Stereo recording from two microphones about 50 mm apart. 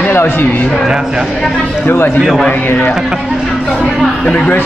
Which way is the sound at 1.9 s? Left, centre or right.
Left.